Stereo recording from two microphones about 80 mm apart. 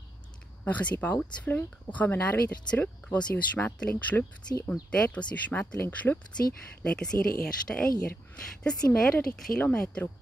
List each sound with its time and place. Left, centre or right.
0.7 s speech: centre